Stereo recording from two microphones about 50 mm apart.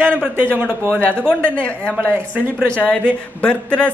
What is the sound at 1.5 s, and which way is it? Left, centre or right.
Speech, left.